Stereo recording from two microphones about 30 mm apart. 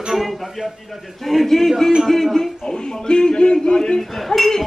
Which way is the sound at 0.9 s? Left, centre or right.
Centre.